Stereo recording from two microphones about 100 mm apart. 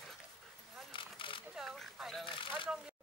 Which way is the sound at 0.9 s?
60° left (ahead or behind).